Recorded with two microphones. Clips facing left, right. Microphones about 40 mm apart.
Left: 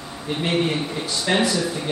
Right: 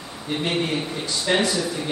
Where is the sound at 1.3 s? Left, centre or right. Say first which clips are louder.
Even; centre.